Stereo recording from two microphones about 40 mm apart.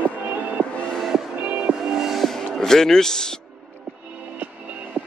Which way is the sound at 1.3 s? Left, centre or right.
Right.